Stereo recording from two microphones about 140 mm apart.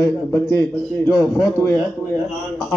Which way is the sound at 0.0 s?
20° left (ahead or behind).